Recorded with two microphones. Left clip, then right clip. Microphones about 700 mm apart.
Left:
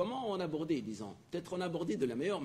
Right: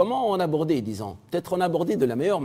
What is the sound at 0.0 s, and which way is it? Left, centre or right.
A man's voice, right.